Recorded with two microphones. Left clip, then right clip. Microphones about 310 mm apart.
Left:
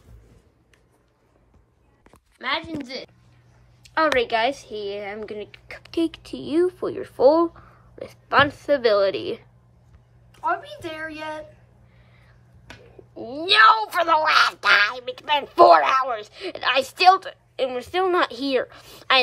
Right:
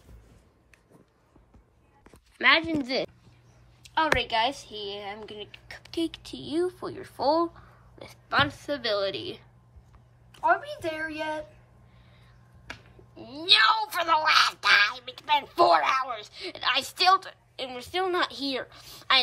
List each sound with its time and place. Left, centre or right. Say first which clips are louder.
2.4 s speech: right 5 dB; centre
4.0 s speech: left 5 dB; centre
4.6 s a woman's voice: left 6 dB; right
5.0 s speech: left 6 dB; centre
12.6 s speech: even; centre